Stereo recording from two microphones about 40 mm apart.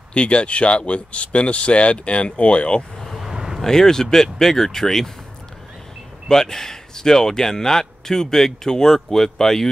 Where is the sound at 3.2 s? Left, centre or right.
Centre.